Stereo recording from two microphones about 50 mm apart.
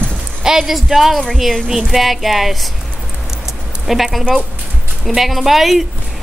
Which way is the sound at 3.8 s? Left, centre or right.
Centre.